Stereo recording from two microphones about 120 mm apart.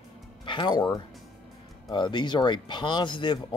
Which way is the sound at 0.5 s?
40° left (ahead or behind).